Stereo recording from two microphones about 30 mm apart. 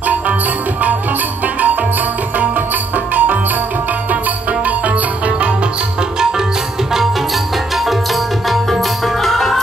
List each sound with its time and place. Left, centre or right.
0.0 s music: right
4.1 s music: right
7.5 s tabla: centre